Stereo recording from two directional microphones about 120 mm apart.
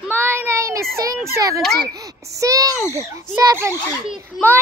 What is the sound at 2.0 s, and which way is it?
A child's voice, 30° right (ahead or behind).